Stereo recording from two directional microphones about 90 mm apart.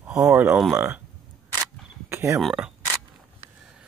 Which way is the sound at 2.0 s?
30° right (ahead or behind).